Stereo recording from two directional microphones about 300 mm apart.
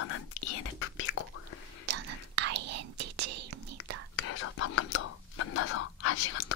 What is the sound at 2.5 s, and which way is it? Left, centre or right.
Whispering, right.